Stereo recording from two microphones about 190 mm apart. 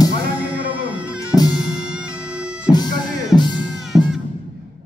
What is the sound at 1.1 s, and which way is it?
Music, 20° left (ahead or behind).